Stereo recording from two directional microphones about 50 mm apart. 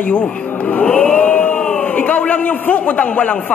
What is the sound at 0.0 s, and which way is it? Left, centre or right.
A man's voice, left.